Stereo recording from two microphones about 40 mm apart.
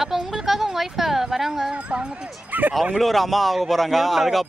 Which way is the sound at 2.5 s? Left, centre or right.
Right.